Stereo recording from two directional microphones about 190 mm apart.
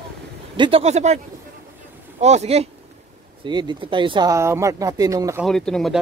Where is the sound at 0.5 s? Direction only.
25° right (ahead or behind).